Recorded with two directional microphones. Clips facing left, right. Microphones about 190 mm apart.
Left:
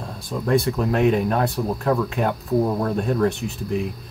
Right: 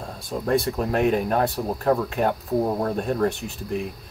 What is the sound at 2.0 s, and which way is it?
Speech, 45° right (ahead or behind).